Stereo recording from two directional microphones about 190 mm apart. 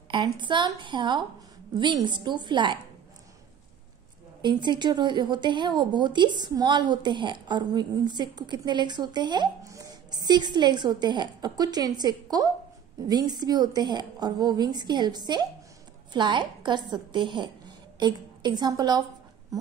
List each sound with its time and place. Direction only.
0.1 s speech: 25° right (ahead or behind)
4.4 s a woman's voice: 25° right (ahead or behind)